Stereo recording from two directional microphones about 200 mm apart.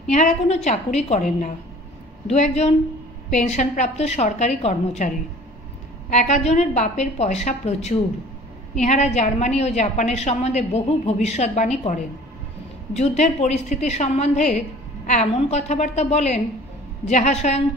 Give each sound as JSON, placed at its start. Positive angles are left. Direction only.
{"t": 0.1, "sound": "a woman's voice", "side_deg": 35}